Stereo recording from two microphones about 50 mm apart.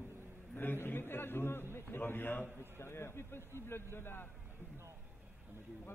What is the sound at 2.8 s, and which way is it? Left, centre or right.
A man's voice, left.